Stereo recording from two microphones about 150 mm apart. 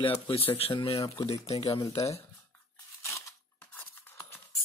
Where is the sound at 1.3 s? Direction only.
25° left (ahead or behind).